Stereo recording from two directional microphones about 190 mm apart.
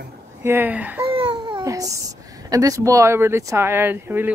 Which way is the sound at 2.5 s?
20° right (ahead or behind).